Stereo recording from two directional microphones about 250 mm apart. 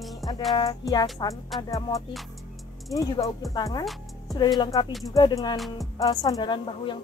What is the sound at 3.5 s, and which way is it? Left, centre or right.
A woman's voice, centre.